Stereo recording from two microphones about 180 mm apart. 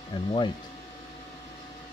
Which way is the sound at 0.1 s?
25° left (ahead or behind).